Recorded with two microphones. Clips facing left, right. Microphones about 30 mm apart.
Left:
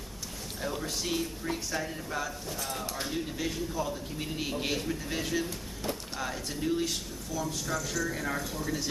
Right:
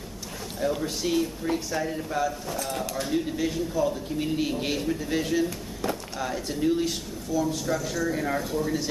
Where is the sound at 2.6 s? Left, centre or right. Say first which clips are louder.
Right 5 dB; right.